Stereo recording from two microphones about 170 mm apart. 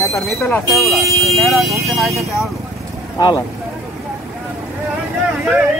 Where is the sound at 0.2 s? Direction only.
Centre (ahead or behind).